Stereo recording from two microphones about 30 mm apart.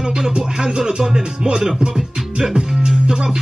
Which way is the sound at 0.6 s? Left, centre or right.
Right.